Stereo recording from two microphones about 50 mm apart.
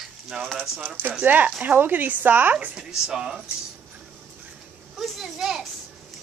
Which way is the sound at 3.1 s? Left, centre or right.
Centre.